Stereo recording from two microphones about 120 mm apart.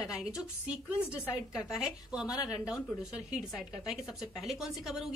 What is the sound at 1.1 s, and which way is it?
Speech, 20° left (ahead or behind).